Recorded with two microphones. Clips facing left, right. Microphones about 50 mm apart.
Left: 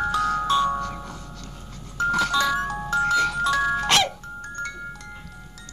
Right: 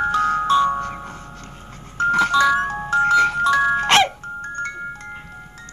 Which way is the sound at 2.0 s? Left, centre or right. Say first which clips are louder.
Right 5 dB; right.